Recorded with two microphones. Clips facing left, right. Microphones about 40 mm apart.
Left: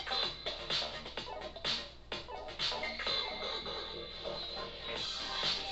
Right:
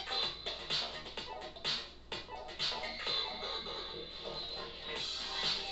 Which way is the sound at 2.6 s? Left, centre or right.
Centre.